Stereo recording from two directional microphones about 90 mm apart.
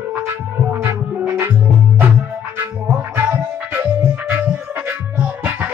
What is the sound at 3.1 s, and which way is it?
Music, 25° right (ahead or behind).